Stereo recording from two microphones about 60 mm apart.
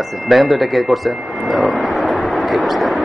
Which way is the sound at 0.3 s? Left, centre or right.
Centre.